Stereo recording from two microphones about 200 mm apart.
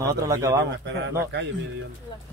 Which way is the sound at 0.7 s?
65° right (ahead or behind).